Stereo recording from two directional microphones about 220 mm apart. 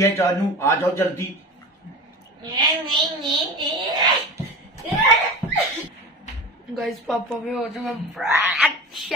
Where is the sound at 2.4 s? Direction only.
20° right (ahead or behind).